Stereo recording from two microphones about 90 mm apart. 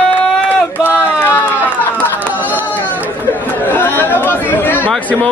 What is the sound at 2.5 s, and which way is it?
Chatter, 20° left (ahead or behind).